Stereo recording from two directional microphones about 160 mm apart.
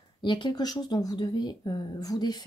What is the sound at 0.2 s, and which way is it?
Speech, 30° left (ahead or behind).